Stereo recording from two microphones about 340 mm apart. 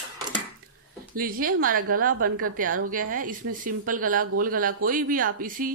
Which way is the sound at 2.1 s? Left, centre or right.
Right.